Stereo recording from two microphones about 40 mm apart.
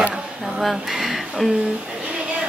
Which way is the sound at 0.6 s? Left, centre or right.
Centre.